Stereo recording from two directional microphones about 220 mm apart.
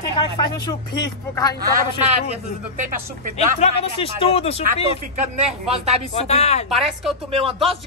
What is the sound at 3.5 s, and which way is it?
Speech, 25° left (ahead or behind).